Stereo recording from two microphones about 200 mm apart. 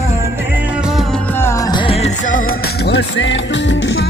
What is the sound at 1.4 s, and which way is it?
Music, 15° left (ahead or behind).